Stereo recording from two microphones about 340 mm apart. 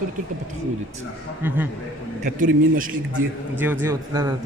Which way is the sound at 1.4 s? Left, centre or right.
Centre.